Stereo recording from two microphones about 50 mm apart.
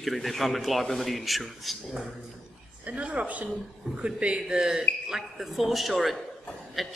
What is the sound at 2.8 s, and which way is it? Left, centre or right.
A woman's voice, right.